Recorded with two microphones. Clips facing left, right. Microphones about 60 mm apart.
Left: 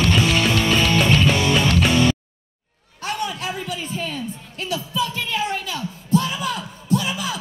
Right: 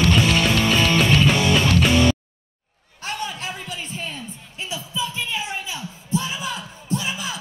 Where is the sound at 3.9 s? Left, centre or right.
Right.